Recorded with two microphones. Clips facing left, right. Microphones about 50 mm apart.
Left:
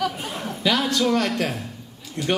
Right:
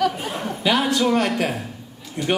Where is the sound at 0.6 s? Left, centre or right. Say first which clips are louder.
Right 2 dB; right.